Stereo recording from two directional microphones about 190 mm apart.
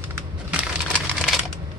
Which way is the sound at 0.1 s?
5° right (ahead or behind).